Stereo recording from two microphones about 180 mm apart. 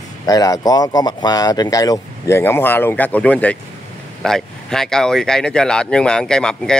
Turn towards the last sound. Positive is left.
turn(degrees=5)  # may be behind; listen again after turning